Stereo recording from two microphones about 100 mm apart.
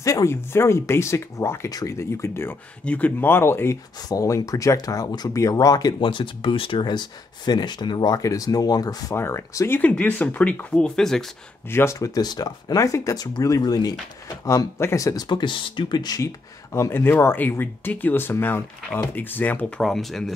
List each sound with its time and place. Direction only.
0.0 s speech: 30° left (ahead or behind)
2.8 s speech: 15° left (ahead or behind)
4.1 s speech: 35° left (ahead or behind)
6.0 s speech: 60° left (ahead or behind)
8.2 s speech: 35° left (ahead or behind)
9.1 s speech: 25° left (ahead or behind)
9.8 s speech: 15° left (ahead or behind)
11.7 s speech: 30° left (ahead or behind)
15.2 s speech: 50° left (ahead or behind)
16.2 s speech: 30° left (ahead or behind)
19.8 s speech: centre (ahead or behind)